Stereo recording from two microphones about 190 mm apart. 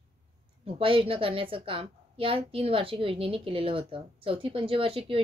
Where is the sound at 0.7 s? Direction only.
30° right (ahead or behind).